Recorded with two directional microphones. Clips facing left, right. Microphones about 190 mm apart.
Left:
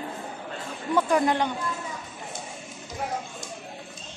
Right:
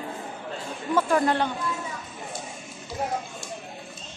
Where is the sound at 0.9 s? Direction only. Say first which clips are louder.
Even; 15° left (ahead or behind).